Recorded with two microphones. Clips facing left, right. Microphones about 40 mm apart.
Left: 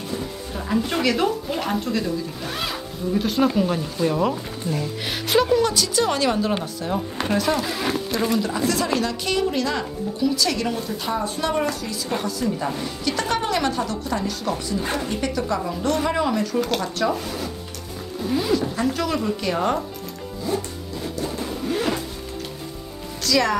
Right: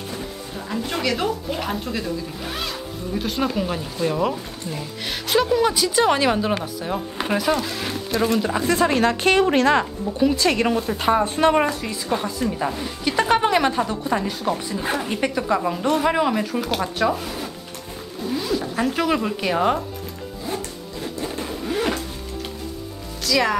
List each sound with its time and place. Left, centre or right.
0.6 s speech: centre
5.6 s speech: centre
8.4 s a woman's voice: right
10.1 s a woman's voice: right; by 18.6 s centre
18.8 s speech: right
20.5 s zipper: right
21.2 s a sound: centre
23.2 s speech: centre